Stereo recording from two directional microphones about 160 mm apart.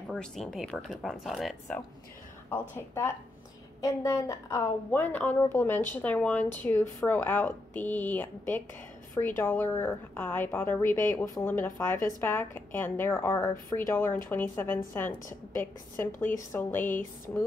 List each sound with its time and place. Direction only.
0.1 s speech: 5° left (ahead or behind)
3.8 s a woman's voice: 20° left (ahead or behind)